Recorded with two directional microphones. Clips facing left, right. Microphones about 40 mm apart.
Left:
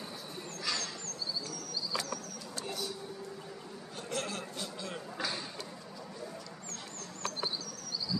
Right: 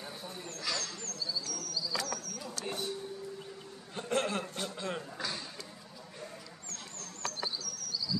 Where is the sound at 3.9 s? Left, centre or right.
Right.